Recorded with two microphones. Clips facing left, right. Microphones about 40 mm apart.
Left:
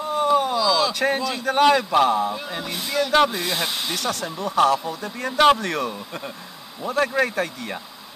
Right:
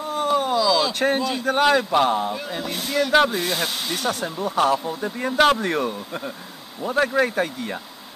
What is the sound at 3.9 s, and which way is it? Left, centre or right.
Speech, centre.